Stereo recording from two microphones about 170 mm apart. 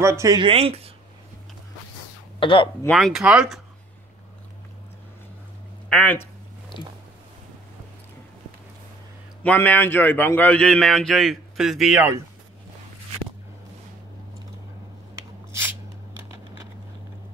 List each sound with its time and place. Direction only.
0.0 s speech: 15° right (ahead or behind)
0.4 s speech: 35° right (ahead or behind)
2.4 s speech: 30° left (ahead or behind)
2.8 s speech: 5° left (ahead or behind)
5.9 s speech: 5° left (ahead or behind)
9.4 s a man's voice: 10° left (ahead or behind)